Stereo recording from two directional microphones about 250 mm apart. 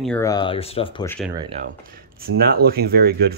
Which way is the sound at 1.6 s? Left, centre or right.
Right.